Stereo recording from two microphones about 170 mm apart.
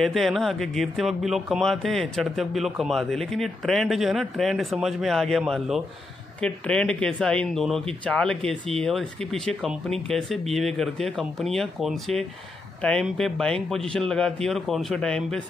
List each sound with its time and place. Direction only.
0.0 s speech: centre (ahead or behind)
6.4 s speech: 5° left (ahead or behind)